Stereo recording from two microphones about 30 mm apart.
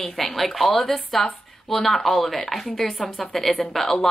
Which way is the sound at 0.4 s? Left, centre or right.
Centre.